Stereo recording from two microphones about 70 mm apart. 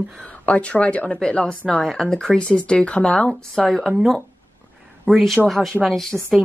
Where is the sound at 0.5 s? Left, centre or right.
Centre.